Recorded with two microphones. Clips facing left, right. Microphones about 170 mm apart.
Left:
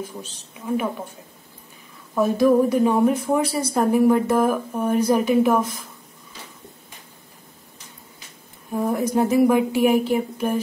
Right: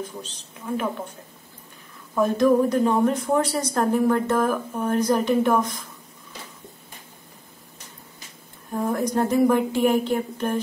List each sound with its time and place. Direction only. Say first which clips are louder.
2.1 s a woman's voice: left 2 dB; 5° left (ahead or behind)
8.7 s a woman's voice: left 2 dB; 5° left (ahead or behind)